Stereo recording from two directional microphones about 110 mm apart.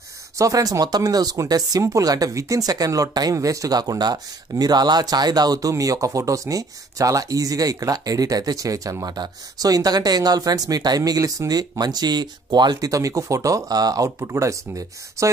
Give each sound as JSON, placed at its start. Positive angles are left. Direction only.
{"t": 0.4, "sound": "speech", "side_deg": -30}